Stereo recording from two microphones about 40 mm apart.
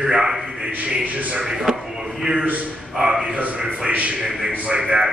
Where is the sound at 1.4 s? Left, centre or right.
Centre.